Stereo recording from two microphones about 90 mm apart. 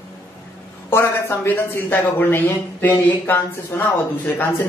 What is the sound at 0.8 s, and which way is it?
Speech, 25° left (ahead or behind).